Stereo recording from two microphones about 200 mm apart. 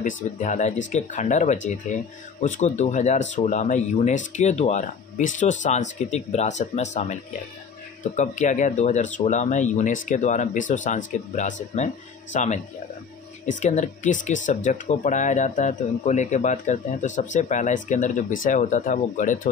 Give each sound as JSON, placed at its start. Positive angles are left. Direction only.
{"t": 0.0, "sound": "speech", "side_deg": 40}